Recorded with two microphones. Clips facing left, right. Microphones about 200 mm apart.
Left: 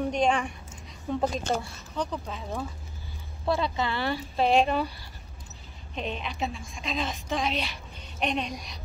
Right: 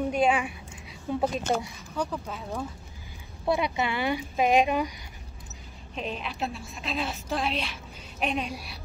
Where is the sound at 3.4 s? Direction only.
15° right (ahead or behind).